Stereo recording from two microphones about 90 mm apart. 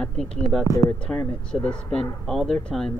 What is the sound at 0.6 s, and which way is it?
Speech, 40° left (ahead or behind).